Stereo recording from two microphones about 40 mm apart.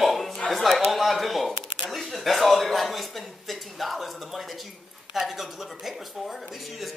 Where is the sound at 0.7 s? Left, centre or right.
Centre.